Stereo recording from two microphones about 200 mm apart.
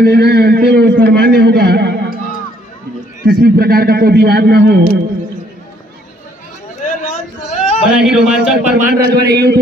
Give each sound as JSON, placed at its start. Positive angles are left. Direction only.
{"t": 0.0, "sound": "a man's voice", "side_deg": -50}
{"t": 3.3, "sound": "a man's voice", "side_deg": -50}
{"t": 6.8, "sound": "a sound", "side_deg": 40}
{"t": 8.0, "sound": "speech", "side_deg": -5}
{"t": 8.7, "sound": "a man's voice", "side_deg": -45}